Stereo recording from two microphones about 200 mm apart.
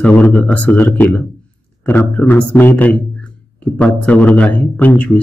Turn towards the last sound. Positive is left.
turn(degrees=5)  # may be behind; listen again after turning